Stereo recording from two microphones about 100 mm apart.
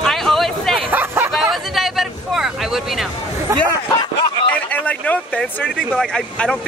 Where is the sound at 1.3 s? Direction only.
Centre (ahead or behind).